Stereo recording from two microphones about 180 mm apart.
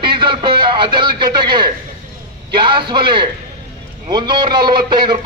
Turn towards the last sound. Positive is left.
turn(degrees=-25)  # may be behind; listen again after turning